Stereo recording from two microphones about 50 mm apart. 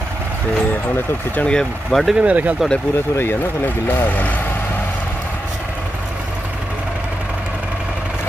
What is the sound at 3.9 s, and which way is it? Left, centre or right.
Speech, left.